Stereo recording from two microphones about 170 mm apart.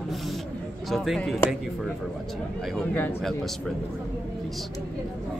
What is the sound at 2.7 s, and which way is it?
Speech, 10° left (ahead or behind).